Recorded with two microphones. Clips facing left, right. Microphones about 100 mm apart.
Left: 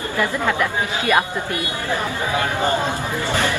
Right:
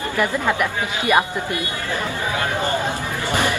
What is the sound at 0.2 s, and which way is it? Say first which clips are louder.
A woman's voice: even; 15° right (ahead or behind).